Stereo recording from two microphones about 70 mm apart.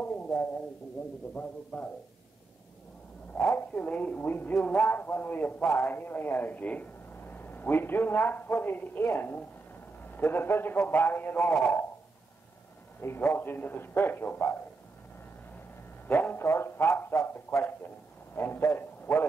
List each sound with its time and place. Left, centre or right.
0.0 s a sound: left
1.3 s speech: left
3.3 s speech: left
13.0 s a man's voice: left
16.1 s a man's voice: left